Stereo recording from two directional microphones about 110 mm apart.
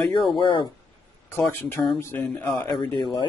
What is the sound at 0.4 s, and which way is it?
Speech, 50° left (ahead or behind).